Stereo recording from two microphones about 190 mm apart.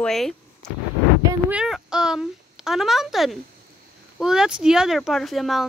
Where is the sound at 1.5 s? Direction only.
5° right (ahead or behind).